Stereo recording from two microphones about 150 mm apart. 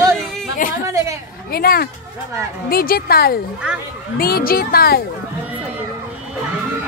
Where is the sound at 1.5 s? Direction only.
85° left.